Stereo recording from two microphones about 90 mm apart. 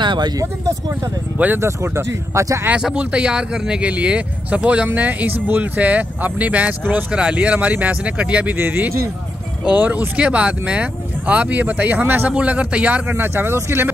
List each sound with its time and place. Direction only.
0.0 s speech: 55° right (ahead or behind)
1.4 s speech: 25° right (ahead or behind)
2.7 s speech: 15° right (ahead or behind)